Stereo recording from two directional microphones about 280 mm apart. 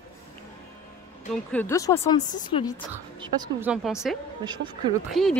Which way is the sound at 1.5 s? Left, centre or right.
Centre.